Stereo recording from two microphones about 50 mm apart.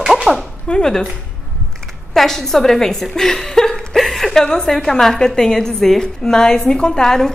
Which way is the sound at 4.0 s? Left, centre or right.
Centre.